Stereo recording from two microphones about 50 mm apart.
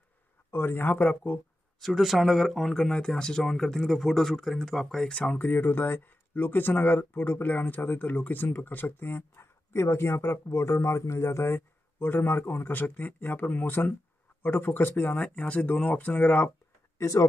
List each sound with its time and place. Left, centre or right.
0.5 s speech: left
2.0 s speech: centre
5.0 s speech: centre
5.4 s speech: left
11.5 s speech: left